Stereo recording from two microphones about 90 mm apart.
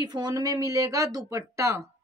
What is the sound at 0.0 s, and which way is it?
Speech, 50° right (ahead or behind).